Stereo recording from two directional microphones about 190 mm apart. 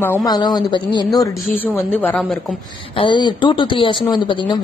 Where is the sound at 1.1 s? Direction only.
10° left (ahead or behind).